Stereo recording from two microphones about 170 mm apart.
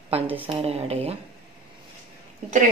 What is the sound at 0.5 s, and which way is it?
Speech, 35° right (ahead or behind).